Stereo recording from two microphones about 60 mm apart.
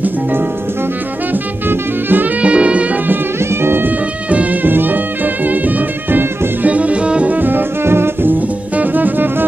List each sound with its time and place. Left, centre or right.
0.0 s music: right
2.4 s music: right
3.3 s music: right
4.3 s music: right